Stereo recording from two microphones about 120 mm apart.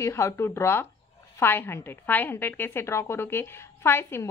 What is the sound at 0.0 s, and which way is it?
A woman's voice, 25° left (ahead or behind).